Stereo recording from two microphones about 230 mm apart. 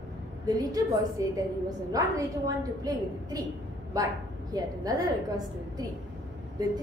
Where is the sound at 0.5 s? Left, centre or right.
Centre.